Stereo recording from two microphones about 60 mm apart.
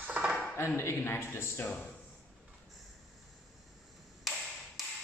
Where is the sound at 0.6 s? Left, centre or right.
Left.